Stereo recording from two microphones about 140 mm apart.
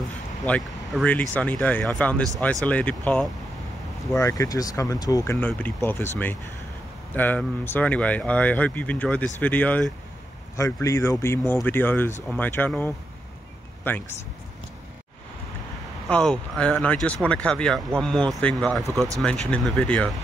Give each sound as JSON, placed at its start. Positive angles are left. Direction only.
{"t": 0.5, "sound": "speech", "side_deg": 5}
{"t": 4.1, "sound": "speech", "side_deg": 20}
{"t": 7.2, "sound": "speech", "side_deg": 15}
{"t": 10.5, "sound": "speech", "side_deg": 20}
{"t": 13.9, "sound": "speech", "side_deg": 15}
{"t": 16.1, "sound": "speech", "side_deg": 5}
{"t": 18.9, "sound": "speech", "side_deg": -25}
{"t": 19.2, "sound": "speech", "side_deg": 5}